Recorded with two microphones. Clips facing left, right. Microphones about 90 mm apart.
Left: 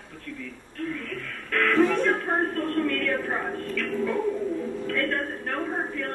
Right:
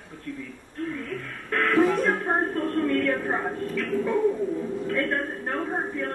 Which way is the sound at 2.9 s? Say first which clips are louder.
Right 3 dB; 20° right (ahead or behind).